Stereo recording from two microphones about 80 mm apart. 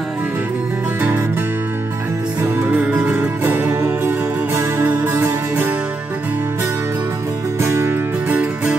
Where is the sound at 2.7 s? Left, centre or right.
Right.